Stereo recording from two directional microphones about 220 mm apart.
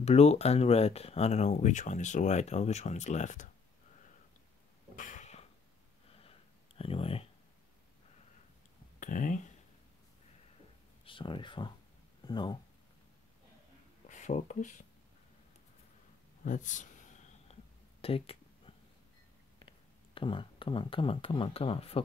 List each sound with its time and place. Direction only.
0.0 s speech: 30° left (ahead or behind)
4.9 s a sound: 35° left (ahead or behind)
9.0 s speech: 35° left (ahead or behind)
11.1 s speech: 20° left (ahead or behind)
14.0 s speech: 35° left (ahead or behind)
16.4 s a sound: 35° left (ahead or behind)
18.0 s speech: 25° left (ahead or behind)
20.2 s speech: 20° left (ahead or behind)